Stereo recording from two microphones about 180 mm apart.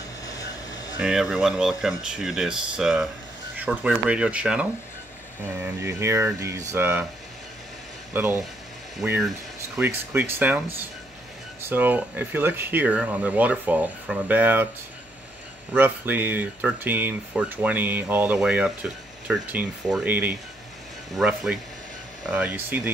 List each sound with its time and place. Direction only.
0.9 s speech: 5° right (ahead or behind)
8.1 s speech: 10° right (ahead or behind)
9.8 s speech: 10° right (ahead or behind)
15.7 s speech: 10° right (ahead or behind)